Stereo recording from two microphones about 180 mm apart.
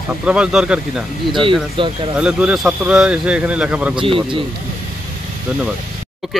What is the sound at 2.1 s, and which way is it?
Speech, 5° right (ahead or behind).